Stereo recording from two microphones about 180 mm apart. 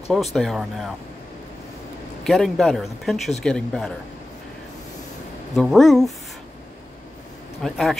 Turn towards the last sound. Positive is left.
turn(degrees=0)  # may be behind; listen again after turning